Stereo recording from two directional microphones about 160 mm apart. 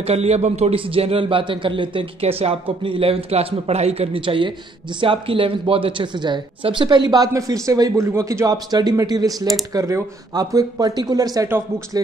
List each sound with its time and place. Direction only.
0.0 s a man's voice: 40° right (ahead or behind); by 12.0 s 20° right (ahead or behind)